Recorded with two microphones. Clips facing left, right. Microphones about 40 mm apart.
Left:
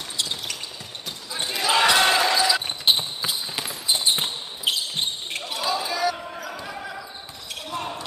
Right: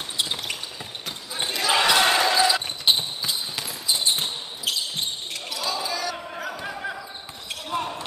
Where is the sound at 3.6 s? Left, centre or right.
Left.